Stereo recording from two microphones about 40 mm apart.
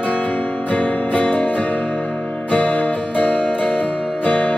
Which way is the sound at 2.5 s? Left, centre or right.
Left.